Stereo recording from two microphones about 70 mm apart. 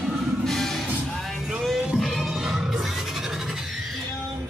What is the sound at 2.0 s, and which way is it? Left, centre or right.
Music, centre.